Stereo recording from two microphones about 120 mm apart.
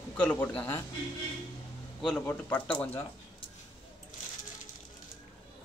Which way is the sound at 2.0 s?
10° left (ahead or behind).